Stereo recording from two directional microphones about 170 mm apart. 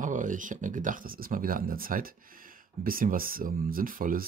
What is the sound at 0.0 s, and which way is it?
Speech, 50° right (ahead or behind).